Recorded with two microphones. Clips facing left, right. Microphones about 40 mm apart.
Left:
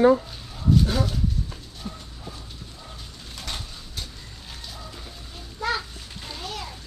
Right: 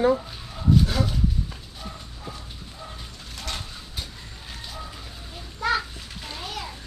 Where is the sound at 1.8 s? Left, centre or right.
Centre.